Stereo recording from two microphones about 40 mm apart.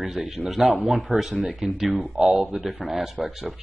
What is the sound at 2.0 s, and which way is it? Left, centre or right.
Speech, centre.